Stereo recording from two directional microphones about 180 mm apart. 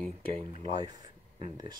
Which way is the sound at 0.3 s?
25° right (ahead or behind).